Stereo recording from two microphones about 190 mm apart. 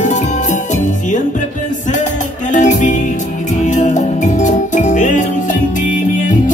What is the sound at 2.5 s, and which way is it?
Music, 40° left (ahead or behind).